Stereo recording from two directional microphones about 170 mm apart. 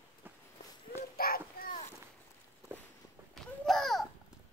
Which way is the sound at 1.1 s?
60° left (ahead or behind).